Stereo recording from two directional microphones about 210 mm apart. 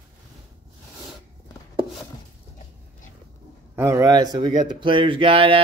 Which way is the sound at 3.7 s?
15° right (ahead or behind).